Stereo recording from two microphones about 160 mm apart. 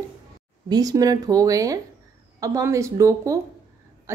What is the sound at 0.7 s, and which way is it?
A woman's voice, 25° right (ahead or behind).